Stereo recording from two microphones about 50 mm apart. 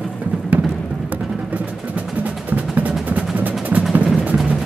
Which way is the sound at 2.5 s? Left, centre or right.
Right.